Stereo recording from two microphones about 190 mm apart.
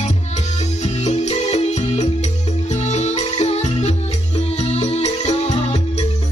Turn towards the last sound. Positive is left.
turn(degrees=35)  # may be behind; listen again after turning